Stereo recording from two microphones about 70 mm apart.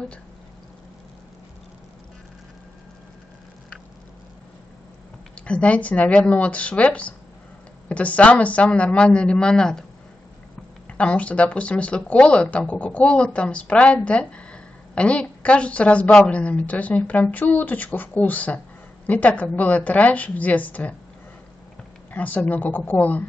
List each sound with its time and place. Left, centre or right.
5.3 s speech: centre
10.9 s speech: centre
22.1 s speech: left